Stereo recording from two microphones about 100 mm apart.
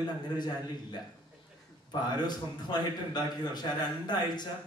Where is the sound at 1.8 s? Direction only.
45° left (ahead or behind).